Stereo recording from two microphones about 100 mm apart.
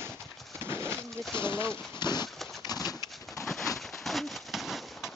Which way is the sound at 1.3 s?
50° left (ahead or behind).